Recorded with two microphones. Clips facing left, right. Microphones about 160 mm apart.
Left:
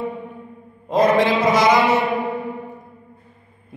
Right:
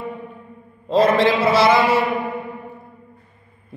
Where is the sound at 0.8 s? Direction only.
15° left (ahead or behind).